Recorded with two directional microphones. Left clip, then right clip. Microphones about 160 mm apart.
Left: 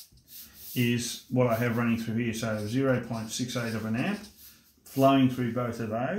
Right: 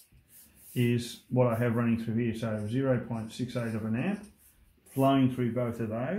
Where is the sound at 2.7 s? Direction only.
30° right (ahead or behind).